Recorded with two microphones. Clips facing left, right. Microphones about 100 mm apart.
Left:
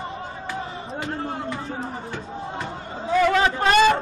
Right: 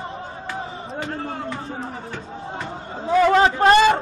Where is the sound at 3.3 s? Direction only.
30° right (ahead or behind).